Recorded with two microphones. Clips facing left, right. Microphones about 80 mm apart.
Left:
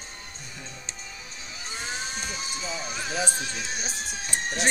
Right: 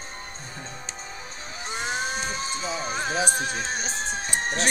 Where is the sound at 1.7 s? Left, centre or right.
Right.